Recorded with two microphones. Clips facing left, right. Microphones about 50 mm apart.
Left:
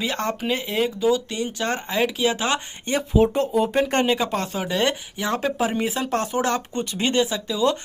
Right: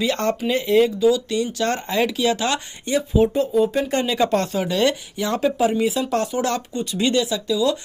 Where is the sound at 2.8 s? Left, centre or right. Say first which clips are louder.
Right 1 dB; left.